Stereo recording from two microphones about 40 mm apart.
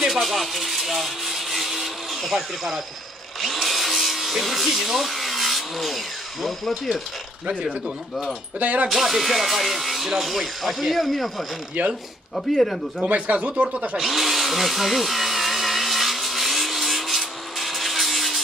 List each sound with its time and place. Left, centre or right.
0.1 s speech: centre
3.3 s drill: centre
8.5 s speech: right
8.8 s speech: centre
11.8 s speech: right
12.4 s speech: centre
13.0 s speech: right
13.9 s drill: centre